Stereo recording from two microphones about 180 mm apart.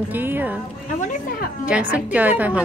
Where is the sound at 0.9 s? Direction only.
45° left (ahead or behind).